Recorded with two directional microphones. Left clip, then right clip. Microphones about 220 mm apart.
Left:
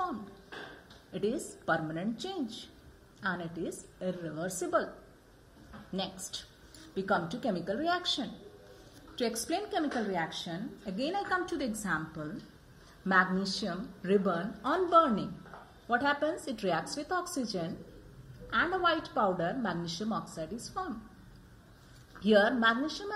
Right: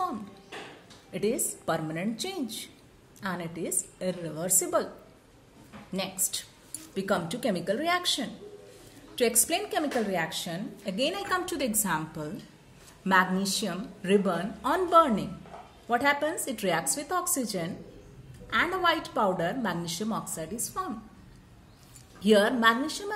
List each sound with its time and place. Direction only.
1.1 s a woman's voice: 45° right (ahead or behind)
7.0 s a woman's voice: 50° right (ahead or behind)
13.0 s a woman's voice: 45° right (ahead or behind)
22.2 s a woman's voice: 45° right (ahead or behind)